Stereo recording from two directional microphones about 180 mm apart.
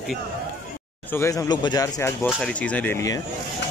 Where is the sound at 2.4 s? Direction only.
5° left (ahead or behind).